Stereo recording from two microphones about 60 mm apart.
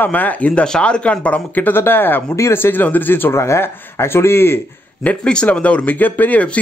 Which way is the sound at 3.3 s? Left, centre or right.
Left.